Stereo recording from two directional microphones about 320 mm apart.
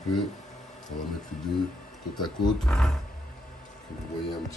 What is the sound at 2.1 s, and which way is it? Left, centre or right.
Speech, centre.